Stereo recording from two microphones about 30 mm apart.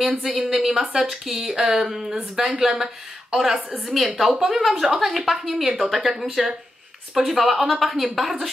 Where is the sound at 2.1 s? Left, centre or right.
Centre.